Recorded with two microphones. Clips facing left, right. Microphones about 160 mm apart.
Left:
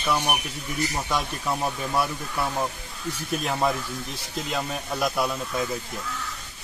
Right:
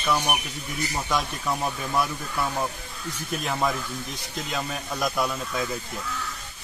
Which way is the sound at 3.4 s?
5° left (ahead or behind).